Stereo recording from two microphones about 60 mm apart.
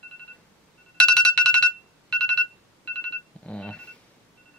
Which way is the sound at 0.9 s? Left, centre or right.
Centre.